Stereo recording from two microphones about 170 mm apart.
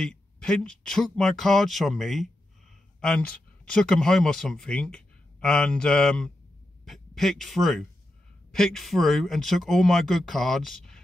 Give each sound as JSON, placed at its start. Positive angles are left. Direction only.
{"t": 0.0, "sound": "speech", "side_deg": 5}
{"t": 3.6, "sound": "a man's voice", "side_deg": 5}